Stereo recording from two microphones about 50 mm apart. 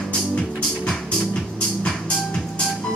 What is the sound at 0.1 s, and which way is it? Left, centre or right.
Music, centre.